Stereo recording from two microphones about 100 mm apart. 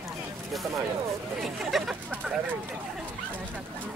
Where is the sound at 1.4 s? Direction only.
Centre (ahead or behind).